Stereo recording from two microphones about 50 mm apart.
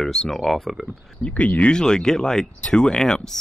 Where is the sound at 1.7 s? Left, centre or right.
Centre.